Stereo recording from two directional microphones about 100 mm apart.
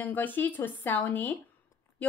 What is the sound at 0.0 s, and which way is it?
A woman's voice, 20° left (ahead or behind).